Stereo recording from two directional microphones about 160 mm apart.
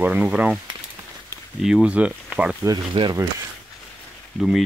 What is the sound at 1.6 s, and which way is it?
Speech, 5° right (ahead or behind).